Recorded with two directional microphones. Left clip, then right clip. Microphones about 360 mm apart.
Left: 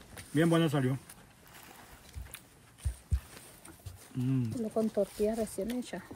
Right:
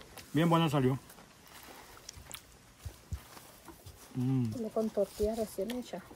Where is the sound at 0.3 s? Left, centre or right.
Centre.